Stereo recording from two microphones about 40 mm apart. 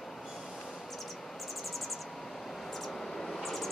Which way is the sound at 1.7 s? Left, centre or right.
Centre.